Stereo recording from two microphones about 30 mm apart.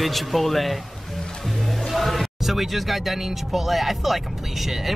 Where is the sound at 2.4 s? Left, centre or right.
Centre.